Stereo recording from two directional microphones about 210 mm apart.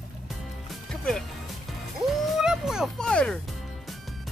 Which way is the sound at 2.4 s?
5° right (ahead or behind).